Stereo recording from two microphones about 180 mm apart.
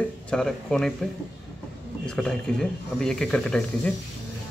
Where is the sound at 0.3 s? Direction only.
5° left (ahead or behind).